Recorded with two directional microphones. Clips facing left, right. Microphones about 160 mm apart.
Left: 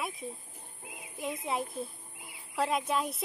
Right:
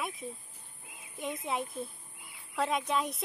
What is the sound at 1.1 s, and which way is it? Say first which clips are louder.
Speech: left 1 dB; centre (ahead or behind).